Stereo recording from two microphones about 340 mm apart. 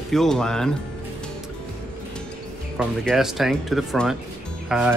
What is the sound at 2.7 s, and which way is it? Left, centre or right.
Speech, centre.